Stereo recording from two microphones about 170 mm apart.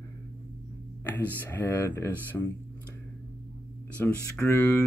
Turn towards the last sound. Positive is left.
turn(degrees=15)  # may be behind; listen again after turning